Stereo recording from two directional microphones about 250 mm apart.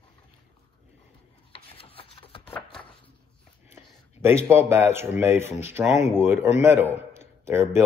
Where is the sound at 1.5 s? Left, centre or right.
Left.